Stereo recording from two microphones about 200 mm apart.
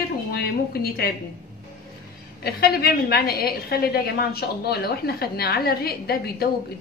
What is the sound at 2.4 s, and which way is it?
A woman's voice, 50° left (ahead or behind).